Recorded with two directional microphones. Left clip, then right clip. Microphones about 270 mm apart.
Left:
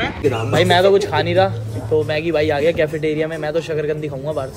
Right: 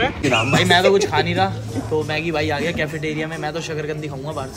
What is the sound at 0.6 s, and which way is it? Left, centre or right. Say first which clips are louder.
A man's voice: left 3 dB; centre.